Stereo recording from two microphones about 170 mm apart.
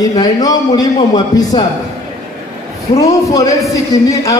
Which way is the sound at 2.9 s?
20° left (ahead or behind).